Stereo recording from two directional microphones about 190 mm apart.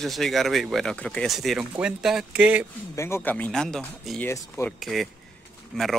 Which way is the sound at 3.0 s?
10° left (ahead or behind).